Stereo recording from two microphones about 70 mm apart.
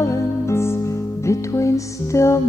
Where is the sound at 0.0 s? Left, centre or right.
Left.